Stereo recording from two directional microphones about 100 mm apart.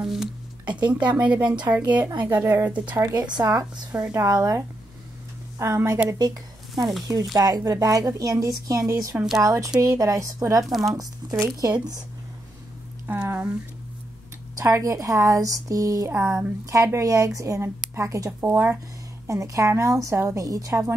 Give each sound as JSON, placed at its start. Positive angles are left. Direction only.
{"t": 0.0, "sound": "speech", "side_deg": -5}
{"t": 1.0, "sound": "speech", "side_deg": -15}
{"t": 3.2, "sound": "speech", "side_deg": -45}
{"t": 4.1, "sound": "speech", "side_deg": -30}
{"t": 5.6, "sound": "speech", "side_deg": -25}
{"t": 6.0, "sound": "speech", "side_deg": -40}
{"t": 6.7, "sound": "speech", "side_deg": 0}
{"t": 7.3, "sound": "speech", "side_deg": -35}
{"t": 10.6, "sound": "speech", "side_deg": 0}
{"t": 11.0, "sound": "speech", "side_deg": -35}
{"t": 13.0, "sound": "speech", "side_deg": -20}
{"t": 14.6, "sound": "speech", "side_deg": -35}